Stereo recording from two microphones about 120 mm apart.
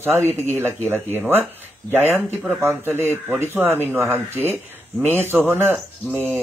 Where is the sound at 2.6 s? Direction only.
20° right (ahead or behind).